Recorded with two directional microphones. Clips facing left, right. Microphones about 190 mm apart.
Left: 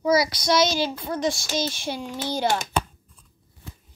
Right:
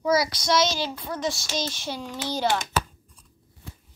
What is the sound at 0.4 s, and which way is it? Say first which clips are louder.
Speech: left 2 dB; 15° left (ahead or behind).